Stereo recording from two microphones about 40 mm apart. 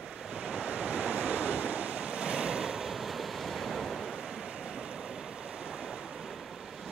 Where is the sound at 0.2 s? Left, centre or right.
Centre.